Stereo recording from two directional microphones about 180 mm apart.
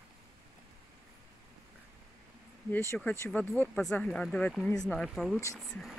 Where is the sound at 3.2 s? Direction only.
10° left (ahead or behind).